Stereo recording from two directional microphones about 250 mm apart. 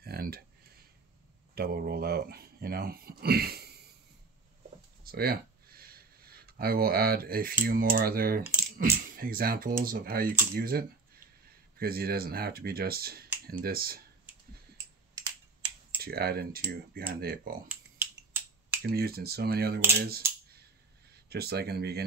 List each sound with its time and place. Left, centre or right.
0.0 s a sound: right
1.5 s speech: right
5.0 s speech: right
16.0 s speech: right
18.9 s speech: right
20.0 s a sound: right
21.1 s speech: right